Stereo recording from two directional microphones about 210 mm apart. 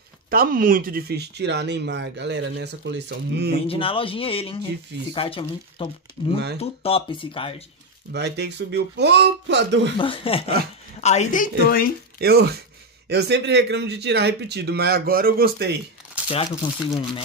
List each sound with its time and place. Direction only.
0.3 s speech: 45° right (ahead or behind)
3.6 s speech: 25° left (ahead or behind)
8.1 s speech: 55° right (ahead or behind)
9.9 s a woman's voice: 25° left (ahead or behind); by 11.9 s 40° left (ahead or behind)
12.2 s speech: 50° right (ahead or behind)
16.3 s speech: 25° left (ahead or behind)